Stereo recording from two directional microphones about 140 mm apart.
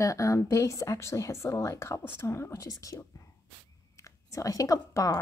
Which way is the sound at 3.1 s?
25° left (ahead or behind).